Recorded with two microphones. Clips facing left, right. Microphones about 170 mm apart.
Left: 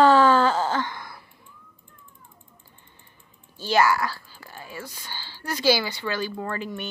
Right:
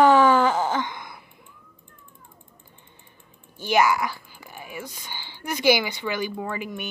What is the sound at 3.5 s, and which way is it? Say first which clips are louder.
Speech: even; 15° right (ahead or behind).